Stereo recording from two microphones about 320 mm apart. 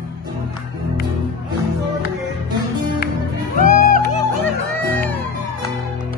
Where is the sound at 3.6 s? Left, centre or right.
Left.